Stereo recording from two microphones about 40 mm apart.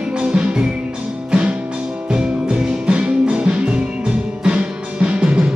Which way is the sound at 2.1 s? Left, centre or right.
Right.